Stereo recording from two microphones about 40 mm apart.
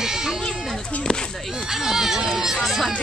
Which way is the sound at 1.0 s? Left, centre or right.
Centre.